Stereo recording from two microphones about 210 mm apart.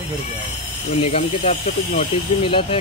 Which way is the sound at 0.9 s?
30° left (ahead or behind).